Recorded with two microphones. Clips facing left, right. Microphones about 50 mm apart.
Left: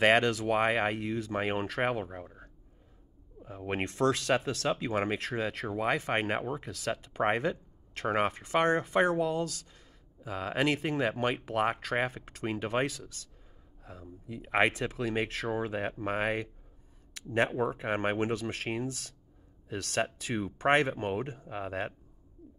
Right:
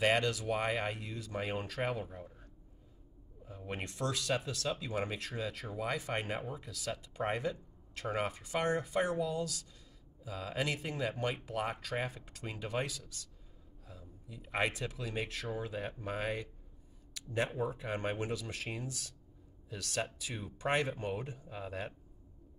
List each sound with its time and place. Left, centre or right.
0.0 s speech: left
14.2 s speech: left
17.1 s a sound: left
17.6 s speech: left